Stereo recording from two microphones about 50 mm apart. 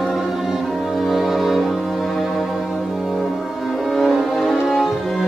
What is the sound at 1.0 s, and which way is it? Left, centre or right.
Music, centre.